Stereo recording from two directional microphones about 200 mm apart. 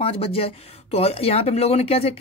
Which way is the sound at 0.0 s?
30° left (ahead or behind).